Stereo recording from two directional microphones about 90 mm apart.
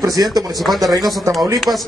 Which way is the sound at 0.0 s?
45° right (ahead or behind).